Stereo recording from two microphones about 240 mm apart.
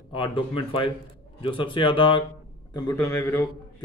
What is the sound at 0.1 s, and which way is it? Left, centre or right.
A man's voice, left.